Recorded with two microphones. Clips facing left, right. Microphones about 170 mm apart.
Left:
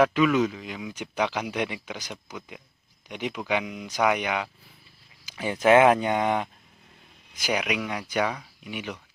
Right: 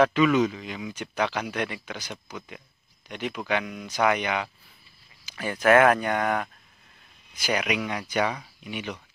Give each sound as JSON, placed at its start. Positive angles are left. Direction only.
{"t": 0.0, "sound": "speech", "side_deg": 5}
{"t": 7.4, "sound": "speech", "side_deg": 5}